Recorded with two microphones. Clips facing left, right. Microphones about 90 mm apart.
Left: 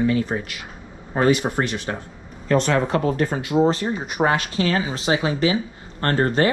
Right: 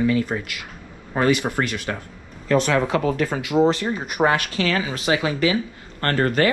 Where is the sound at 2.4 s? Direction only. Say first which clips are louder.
Even; centre (ahead or behind).